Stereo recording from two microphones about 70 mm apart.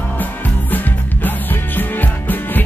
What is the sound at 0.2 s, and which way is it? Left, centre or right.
Music, left.